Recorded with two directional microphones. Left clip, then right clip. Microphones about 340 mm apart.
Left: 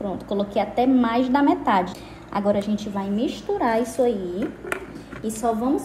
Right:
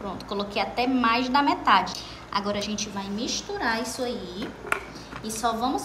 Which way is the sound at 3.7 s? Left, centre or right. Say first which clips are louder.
Left 8 dB; centre.